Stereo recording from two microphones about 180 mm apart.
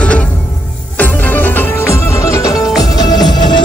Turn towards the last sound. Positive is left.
turn(degrees=25)  # may be behind; listen again after turning